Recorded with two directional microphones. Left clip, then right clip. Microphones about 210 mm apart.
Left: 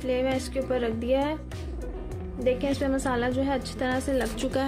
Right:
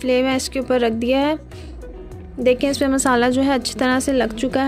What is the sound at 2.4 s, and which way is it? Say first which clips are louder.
A woman's voice: right 9 dB; 50° right (ahead or behind).